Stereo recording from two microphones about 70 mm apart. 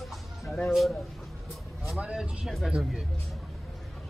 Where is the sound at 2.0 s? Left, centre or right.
Centre.